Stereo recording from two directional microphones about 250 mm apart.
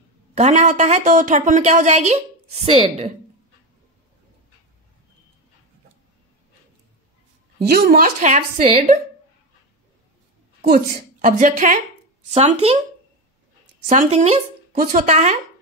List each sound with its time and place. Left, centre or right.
0.3 s speech: right
7.8 s speech: right
10.6 s a woman's voice: right
13.8 s speech: right